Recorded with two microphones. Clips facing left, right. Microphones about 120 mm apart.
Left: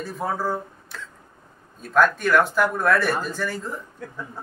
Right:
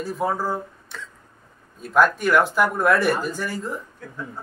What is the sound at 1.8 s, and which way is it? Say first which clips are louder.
Speech: right 1 dB; 10° right (ahead or behind).